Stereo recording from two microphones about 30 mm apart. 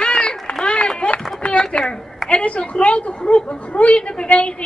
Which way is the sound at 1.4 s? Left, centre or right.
Left.